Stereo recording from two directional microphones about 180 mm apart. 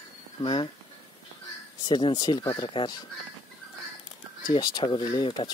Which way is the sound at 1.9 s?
25° left (ahead or behind).